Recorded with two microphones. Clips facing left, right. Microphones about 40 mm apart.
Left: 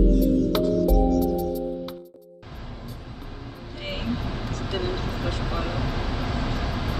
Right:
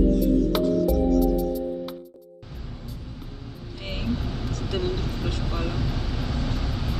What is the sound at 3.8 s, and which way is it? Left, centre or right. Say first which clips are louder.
Vehicle: even; left.